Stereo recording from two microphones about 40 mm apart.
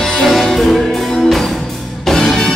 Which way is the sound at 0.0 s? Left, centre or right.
Centre.